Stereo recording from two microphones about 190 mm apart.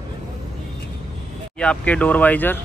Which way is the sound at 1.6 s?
5° left (ahead or behind).